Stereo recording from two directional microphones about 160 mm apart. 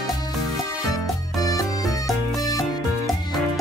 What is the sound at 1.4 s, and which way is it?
Music, 20° left (ahead or behind).